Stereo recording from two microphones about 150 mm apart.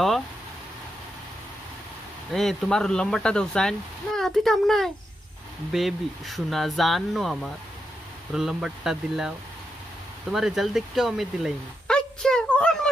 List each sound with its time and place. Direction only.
2.3 s speech: 5° left (ahead or behind)
10.3 s speech: centre (ahead or behind)